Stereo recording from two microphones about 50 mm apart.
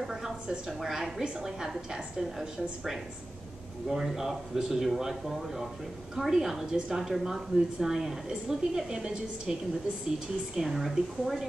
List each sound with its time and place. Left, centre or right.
0.0 s a sound: centre
0.7 s a woman's voice: centre
3.9 s a woman's voice: centre